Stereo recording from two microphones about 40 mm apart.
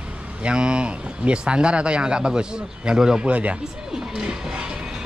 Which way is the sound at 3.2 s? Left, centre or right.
Right.